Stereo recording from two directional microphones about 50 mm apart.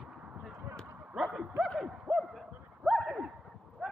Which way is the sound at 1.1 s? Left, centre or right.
Centre.